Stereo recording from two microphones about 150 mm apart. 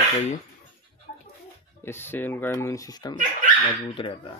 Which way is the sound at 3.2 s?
60° right (ahead or behind).